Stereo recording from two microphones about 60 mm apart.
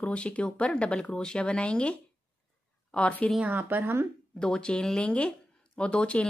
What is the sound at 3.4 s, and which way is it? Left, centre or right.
Speech, right.